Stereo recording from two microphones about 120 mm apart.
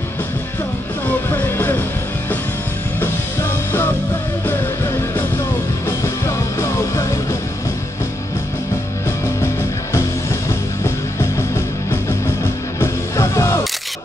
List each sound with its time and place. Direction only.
1.3 s music: 15° left (ahead or behind)
5.9 s music: 25° left (ahead or behind)
12.8 s music: 25° left (ahead or behind)